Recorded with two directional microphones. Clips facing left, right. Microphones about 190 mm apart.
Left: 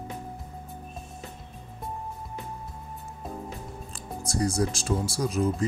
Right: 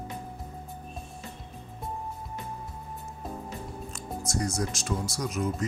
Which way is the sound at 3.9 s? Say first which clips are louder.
Left 3 dB; 30° left (ahead or behind).